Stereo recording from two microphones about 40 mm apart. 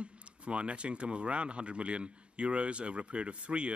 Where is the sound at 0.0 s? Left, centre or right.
Right.